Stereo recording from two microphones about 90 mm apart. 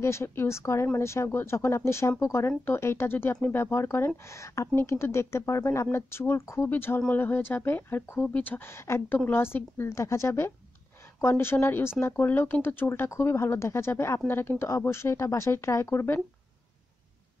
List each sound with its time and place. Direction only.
0.0 s speech: 30° left (ahead or behind)